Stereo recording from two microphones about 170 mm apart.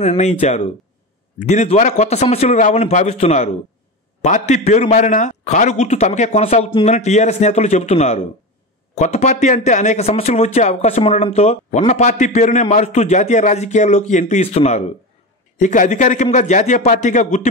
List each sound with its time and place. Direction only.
0.0 s a man's voice: 40° left (ahead or behind)